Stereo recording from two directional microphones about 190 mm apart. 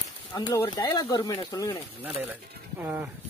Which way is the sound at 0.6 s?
20° left (ahead or behind).